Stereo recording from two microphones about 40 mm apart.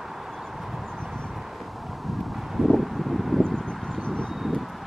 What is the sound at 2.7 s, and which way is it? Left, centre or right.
Wind, centre.